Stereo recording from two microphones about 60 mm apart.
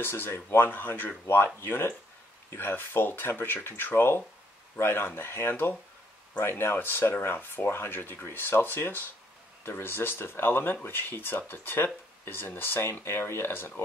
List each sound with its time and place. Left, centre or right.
0.0 s speech: left